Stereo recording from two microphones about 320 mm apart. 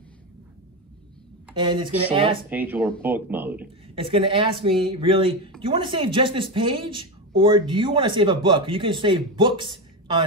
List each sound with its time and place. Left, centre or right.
1.5 s a woman's voice: centre
2.5 s speech: centre
3.9 s a woman's voice: centre